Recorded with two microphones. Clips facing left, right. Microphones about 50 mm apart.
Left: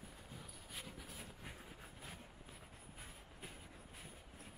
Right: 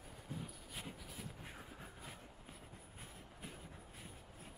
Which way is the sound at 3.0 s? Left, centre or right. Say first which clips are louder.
Right 1 dB; centre.